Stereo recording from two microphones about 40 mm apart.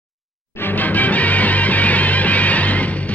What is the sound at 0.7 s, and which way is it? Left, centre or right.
Music, left.